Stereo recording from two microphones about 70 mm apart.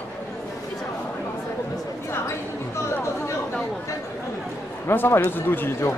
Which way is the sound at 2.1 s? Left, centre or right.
Left.